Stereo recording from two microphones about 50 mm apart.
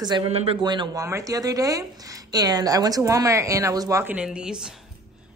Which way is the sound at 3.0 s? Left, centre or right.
Right.